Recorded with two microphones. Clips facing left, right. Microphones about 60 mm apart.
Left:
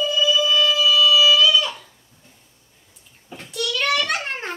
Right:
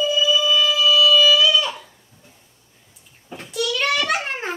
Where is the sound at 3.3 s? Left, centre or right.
Centre.